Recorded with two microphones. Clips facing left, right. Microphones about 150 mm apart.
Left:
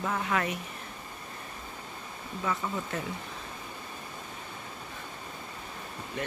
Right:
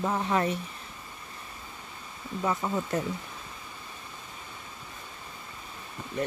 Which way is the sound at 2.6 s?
30° right (ahead or behind).